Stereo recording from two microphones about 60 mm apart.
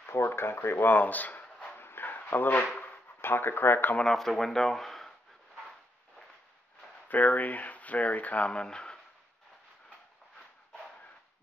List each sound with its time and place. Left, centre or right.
0.0 s speech: left
1.8 s a sound: left
4.0 s speech: centre
7.1 s speech: left